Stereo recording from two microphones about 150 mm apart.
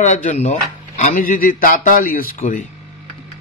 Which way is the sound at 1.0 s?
60° left (ahead or behind).